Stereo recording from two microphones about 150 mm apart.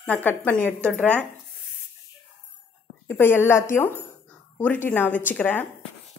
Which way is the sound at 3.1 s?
15° left (ahead or behind).